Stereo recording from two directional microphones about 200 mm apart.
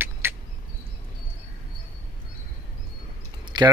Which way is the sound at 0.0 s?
10° right (ahead or behind).